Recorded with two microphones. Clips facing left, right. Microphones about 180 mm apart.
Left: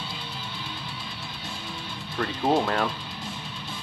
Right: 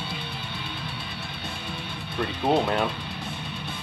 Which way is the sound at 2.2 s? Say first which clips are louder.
Even; 20° right (ahead or behind).